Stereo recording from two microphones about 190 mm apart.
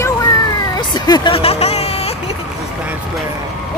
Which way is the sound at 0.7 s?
20° left (ahead or behind).